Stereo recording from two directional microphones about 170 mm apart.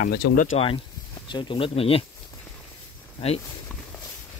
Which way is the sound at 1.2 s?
25° left (ahead or behind).